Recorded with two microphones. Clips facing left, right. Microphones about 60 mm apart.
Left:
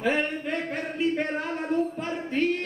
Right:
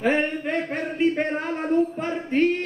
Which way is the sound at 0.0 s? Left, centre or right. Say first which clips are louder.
Right 4 dB; right.